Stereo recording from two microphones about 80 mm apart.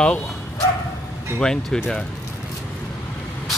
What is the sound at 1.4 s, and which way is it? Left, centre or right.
Mantra, centre.